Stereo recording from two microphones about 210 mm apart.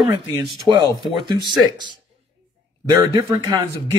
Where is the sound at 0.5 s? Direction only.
20° right (ahead or behind).